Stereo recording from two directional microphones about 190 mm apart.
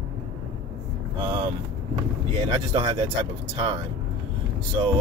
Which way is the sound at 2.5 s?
30° right (ahead or behind).